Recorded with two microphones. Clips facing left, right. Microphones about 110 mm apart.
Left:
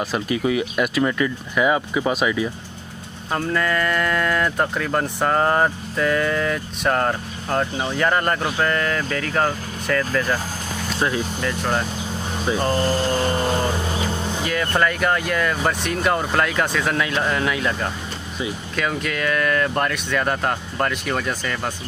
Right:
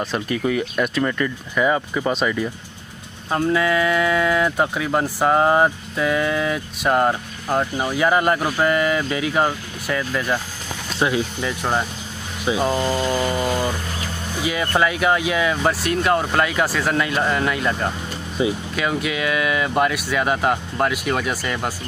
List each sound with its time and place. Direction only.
0.0 s speech: 5° left (ahead or behind)
14.4 s speech: 5° right (ahead or behind)
18.4 s speech: 25° right (ahead or behind)
18.8 s speech: 5° right (ahead or behind)